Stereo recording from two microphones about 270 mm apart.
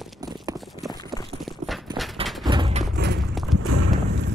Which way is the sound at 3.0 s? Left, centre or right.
Right.